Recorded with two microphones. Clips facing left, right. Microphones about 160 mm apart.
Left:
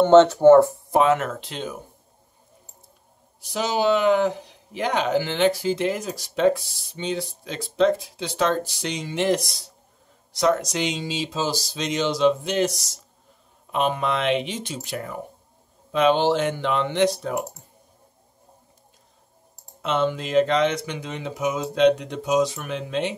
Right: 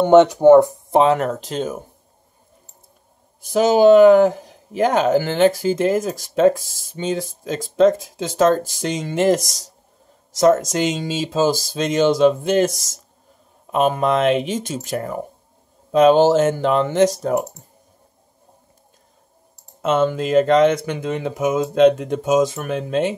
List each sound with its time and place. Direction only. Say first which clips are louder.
0.0 s speech: right 2 dB; 15° right (ahead or behind)
0.9 s speech: right 4 dB; 35° right (ahead or behind)
3.3 s speech: right 10 dB; 50° right (ahead or behind)
19.8 s speech: right 5 dB; 45° right (ahead or behind)